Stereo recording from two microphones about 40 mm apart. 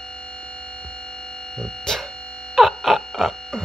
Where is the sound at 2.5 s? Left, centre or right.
Centre.